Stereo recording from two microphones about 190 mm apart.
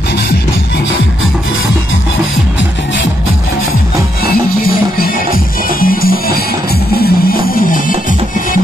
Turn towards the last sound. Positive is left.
turn(degrees=45)  # may be behind; listen again after turning